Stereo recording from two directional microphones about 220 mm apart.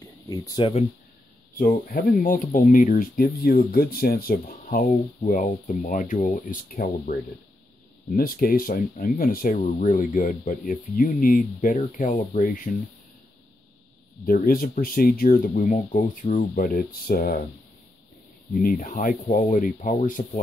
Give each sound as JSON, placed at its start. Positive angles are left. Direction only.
{"t": 0.3, "sound": "speech", "side_deg": 20}
{"t": 1.6, "sound": "speech", "side_deg": 40}
{"t": 14.2, "sound": "speech", "side_deg": 40}
{"t": 18.5, "sound": "speech", "side_deg": 40}